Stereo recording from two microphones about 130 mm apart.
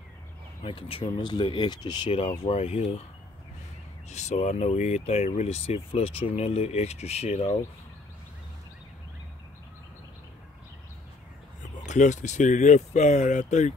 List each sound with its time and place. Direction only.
0.7 s speech: 45° left (ahead or behind)
2.1 s speech: 50° left (ahead or behind)
4.1 s speech: 60° left (ahead or behind)
11.8 s speech: 70° left (ahead or behind)